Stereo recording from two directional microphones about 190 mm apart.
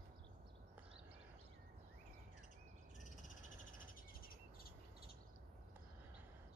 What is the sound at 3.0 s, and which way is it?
Frog, 45° left (ahead or behind).